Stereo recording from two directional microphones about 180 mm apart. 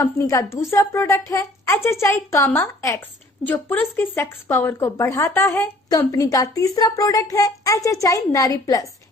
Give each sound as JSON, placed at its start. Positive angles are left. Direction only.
{"t": 0.0, "sound": "a woman's voice", "side_deg": 15}